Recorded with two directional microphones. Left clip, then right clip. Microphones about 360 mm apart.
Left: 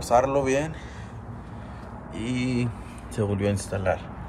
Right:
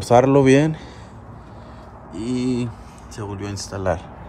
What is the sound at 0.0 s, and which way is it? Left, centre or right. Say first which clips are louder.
Speech: right 7 dB; right.